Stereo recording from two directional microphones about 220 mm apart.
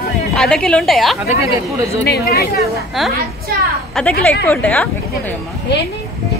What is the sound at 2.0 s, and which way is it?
Speech, 45° left (ahead or behind).